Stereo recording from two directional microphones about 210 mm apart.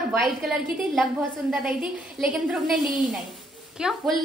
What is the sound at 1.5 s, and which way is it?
Speech, 5° right (ahead or behind).